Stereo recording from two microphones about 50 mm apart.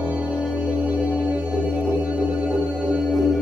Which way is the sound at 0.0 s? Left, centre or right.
Right.